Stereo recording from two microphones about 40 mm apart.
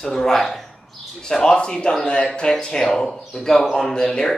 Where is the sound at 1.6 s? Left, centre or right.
Left.